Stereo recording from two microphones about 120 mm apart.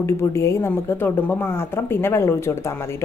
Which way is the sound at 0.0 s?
25° left (ahead or behind).